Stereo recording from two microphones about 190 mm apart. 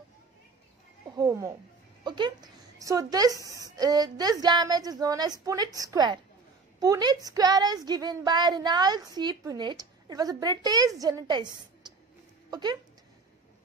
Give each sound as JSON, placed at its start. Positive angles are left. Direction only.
{"t": 1.1, "sound": "a woman's voice", "side_deg": -20}